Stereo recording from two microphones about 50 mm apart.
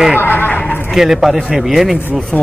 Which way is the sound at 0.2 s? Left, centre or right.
Left.